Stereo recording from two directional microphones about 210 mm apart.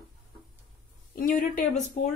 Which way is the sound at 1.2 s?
40° left (ahead or behind).